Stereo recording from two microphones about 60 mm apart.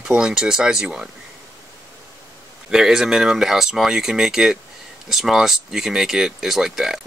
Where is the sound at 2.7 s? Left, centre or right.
Centre.